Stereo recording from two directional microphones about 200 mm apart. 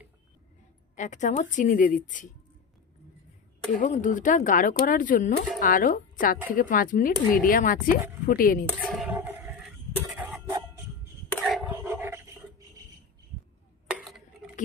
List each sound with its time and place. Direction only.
0.9 s speech: 40° left (ahead or behind)
3.8 s speech: 40° left (ahead or behind)
8.7 s a sound: 5° right (ahead or behind)
9.9 s cough: 5° right (ahead or behind)
11.3 s dog: centre (ahead or behind)
11.7 s dog: 10° right (ahead or behind)
13.8 s a sound: 5° right (ahead or behind)